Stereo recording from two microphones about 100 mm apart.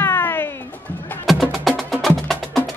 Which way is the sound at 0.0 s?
25° left (ahead or behind).